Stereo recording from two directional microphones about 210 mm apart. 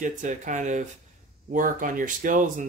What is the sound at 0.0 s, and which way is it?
Speech, 35° right (ahead or behind).